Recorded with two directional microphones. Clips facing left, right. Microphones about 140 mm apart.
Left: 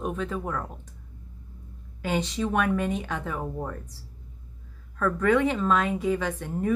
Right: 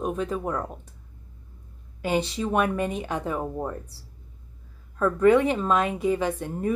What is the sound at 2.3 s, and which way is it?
A woman's voice, 10° right (ahead or behind).